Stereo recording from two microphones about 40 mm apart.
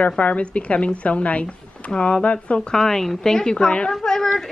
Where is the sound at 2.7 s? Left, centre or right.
Centre.